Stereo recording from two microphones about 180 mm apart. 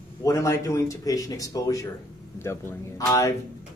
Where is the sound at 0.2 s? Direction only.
15° left (ahead or behind).